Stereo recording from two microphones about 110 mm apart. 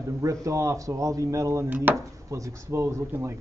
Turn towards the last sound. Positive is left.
turn(degrees=-25)  # may be behind; listen again after turning